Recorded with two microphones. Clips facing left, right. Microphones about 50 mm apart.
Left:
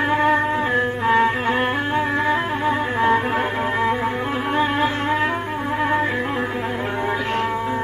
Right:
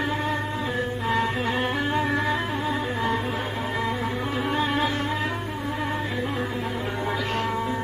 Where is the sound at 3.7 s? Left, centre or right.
Left.